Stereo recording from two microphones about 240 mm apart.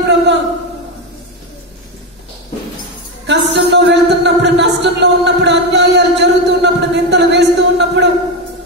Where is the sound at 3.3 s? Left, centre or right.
Right.